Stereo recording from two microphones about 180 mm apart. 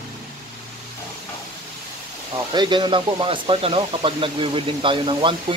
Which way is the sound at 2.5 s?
25° right (ahead or behind).